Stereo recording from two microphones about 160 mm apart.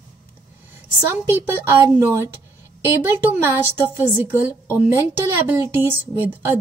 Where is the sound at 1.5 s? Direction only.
15° right (ahead or behind).